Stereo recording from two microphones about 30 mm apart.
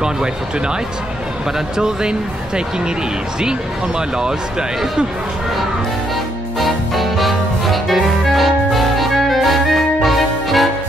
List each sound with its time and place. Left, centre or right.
1.8 s speech: right
4.2 s speech: right
6.6 s music: centre